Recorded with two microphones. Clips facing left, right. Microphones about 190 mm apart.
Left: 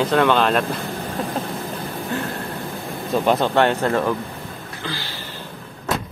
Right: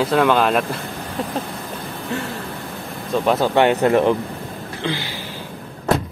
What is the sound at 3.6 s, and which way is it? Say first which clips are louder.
Speech: right 3 dB; 15° right (ahead or behind).